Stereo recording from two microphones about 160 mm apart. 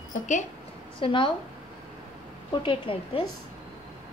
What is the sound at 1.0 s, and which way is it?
Speech, 30° left (ahead or behind).